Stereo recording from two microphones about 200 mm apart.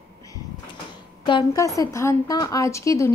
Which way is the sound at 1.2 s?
20° left (ahead or behind).